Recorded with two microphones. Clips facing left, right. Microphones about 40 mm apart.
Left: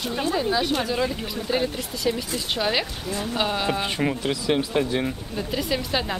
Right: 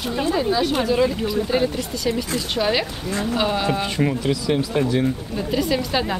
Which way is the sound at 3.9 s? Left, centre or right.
Centre.